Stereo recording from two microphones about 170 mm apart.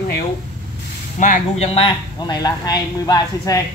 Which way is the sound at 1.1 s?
50° left (ahead or behind).